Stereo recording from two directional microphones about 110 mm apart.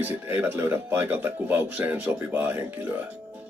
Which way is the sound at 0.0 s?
20° right (ahead or behind).